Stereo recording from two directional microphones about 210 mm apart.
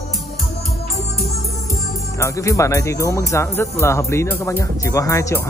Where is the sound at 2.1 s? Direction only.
15° left (ahead or behind).